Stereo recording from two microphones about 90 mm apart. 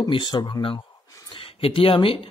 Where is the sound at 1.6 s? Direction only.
90° left.